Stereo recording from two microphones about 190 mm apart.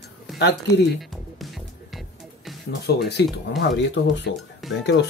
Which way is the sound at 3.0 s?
60° left (ahead or behind).